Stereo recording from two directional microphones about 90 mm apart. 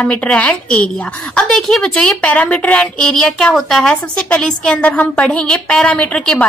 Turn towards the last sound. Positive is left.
turn(degrees=15)  # may be behind; listen again after turning